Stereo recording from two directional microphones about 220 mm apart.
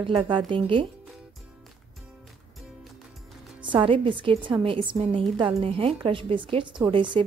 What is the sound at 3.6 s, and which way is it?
A woman's voice, 20° right (ahead or behind).